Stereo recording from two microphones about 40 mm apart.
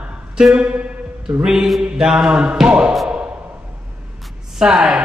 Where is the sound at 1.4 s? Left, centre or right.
Centre.